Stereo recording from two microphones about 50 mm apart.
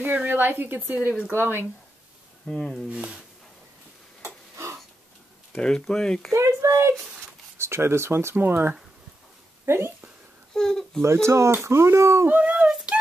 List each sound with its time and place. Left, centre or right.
0.0 s a woman's voice: right
0.4 s a woman's voice: right
2.6 s speech: centre
2.9 s speech: centre
4.2 s a sound: right
5.6 s speech: centre
6.3 s a child's voice: right
8.4 s a woman's voice: right
10.5 s speech: centre
11.0 s speech: right
11.6 s speech: right
12.6 s a sound: right